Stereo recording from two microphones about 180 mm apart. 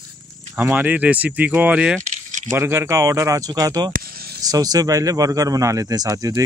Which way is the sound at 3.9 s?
55° right (ahead or behind).